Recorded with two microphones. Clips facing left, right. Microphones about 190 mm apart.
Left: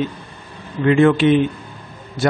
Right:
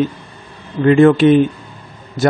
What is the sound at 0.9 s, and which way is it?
Speech, 40° right (ahead or behind).